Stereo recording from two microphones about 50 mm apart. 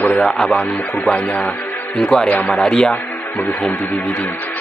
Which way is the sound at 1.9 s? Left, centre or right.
Centre.